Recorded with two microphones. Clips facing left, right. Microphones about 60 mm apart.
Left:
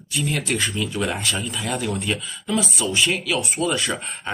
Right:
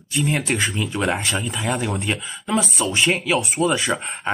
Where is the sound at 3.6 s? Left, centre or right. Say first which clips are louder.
Right 3 dB; centre.